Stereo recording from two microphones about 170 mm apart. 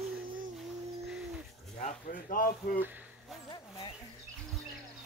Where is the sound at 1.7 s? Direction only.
50° left (ahead or behind).